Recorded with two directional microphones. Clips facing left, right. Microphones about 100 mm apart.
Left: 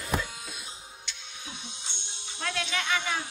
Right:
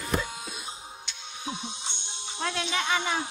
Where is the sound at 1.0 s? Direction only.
25° right (ahead or behind).